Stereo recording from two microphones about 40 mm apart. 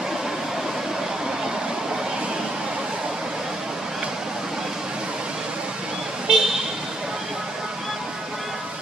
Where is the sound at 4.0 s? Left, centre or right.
Centre.